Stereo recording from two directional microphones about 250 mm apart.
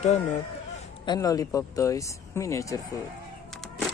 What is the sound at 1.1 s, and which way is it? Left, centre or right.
Speech, centre.